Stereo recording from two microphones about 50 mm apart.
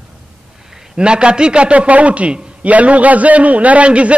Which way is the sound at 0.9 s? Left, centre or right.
Centre.